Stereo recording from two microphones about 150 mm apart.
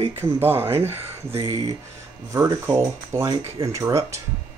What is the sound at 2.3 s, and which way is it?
Speech, 20° right (ahead or behind).